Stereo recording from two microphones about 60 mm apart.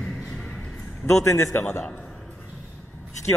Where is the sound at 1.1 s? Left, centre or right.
Left.